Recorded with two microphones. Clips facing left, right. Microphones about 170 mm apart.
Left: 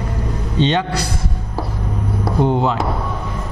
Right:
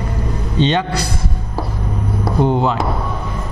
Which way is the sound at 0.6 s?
15° right (ahead or behind).